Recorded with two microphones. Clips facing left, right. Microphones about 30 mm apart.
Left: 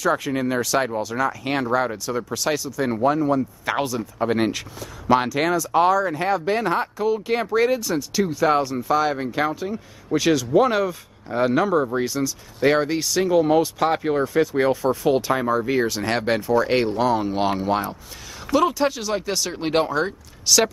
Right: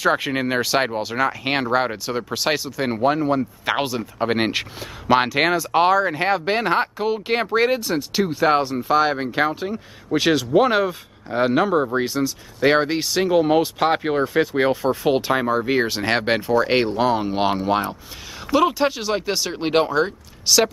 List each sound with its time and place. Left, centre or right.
0.0 s speech: right
18.6 s speech: right; by 20.7 s centre